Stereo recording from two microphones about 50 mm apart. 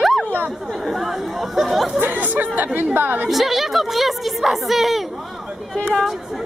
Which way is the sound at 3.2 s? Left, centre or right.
Centre.